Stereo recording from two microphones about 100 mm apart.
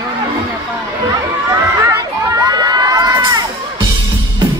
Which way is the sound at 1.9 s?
40° right (ahead or behind).